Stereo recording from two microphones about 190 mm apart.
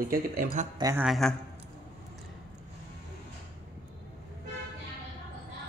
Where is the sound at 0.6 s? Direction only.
40° right (ahead or behind).